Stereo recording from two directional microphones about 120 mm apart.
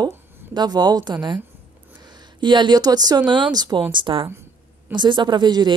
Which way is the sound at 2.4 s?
40° right (ahead or behind).